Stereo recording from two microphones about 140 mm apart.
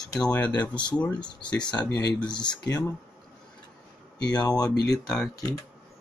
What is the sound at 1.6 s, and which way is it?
Speech, 30° left (ahead or behind).